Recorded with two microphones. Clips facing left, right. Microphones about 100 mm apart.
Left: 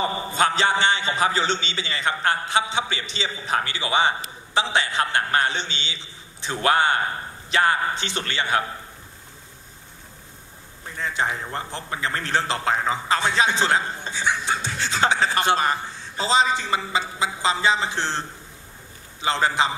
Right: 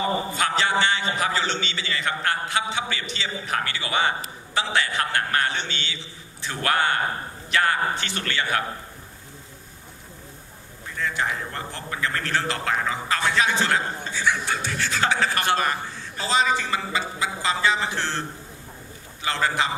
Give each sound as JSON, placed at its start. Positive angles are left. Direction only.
{"t": 0.3, "sound": "a man's voice", "side_deg": 25}
{"t": 11.0, "sound": "a man's voice", "side_deg": 25}
{"t": 19.2, "sound": "a man's voice", "side_deg": 25}